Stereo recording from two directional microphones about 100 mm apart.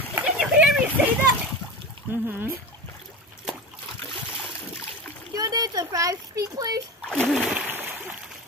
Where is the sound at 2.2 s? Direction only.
20° right (ahead or behind).